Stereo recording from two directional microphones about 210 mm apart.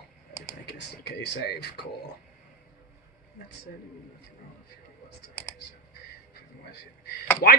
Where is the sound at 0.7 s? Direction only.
50° left (ahead or behind).